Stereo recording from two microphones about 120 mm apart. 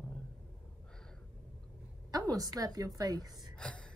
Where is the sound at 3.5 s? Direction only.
5° left (ahead or behind).